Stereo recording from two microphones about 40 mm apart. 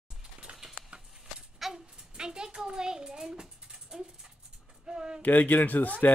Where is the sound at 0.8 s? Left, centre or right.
Right.